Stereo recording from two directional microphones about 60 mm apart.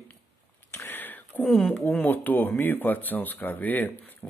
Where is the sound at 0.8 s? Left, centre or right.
Left.